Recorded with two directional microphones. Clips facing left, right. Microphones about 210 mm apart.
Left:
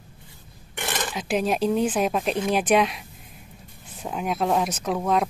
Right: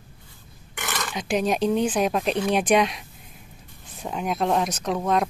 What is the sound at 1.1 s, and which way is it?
Speech, 5° left (ahead or behind).